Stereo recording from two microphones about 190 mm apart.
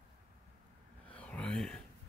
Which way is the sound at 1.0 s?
5° left (ahead or behind).